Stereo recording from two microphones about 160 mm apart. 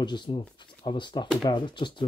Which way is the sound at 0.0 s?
30° left (ahead or behind).